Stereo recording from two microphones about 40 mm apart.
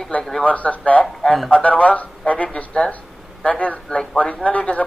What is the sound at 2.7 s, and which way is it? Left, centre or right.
Speech, left.